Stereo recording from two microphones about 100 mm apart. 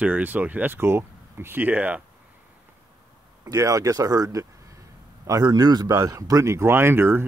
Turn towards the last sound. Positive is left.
turn(degrees=-25)  # may be behind; listen again after turning